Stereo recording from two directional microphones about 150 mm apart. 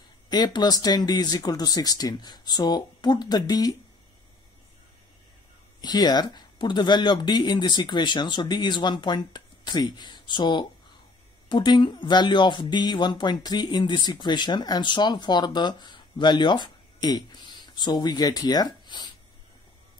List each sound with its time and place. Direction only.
0.3 s speech: 30° left (ahead or behind)
5.8 s speech: 25° left (ahead or behind)